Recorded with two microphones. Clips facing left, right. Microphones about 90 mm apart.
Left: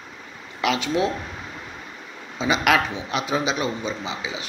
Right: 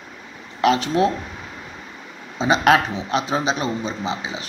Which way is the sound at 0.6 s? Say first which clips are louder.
Right 5 dB; 35° right (ahead or behind).